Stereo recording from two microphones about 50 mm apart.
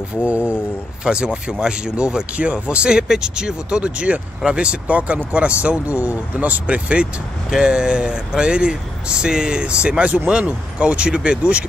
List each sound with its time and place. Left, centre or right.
0.2 s speech: right